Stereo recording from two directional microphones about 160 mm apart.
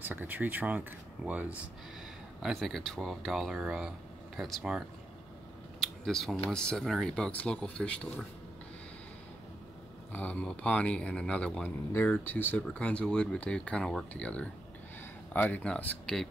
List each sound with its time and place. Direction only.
0.0 s speech: 10° right (ahead or behind)
5.8 s a sound: centre (ahead or behind)
6.5 s speech: 5° left (ahead or behind)
10.1 s a man's voice: 10° left (ahead or behind)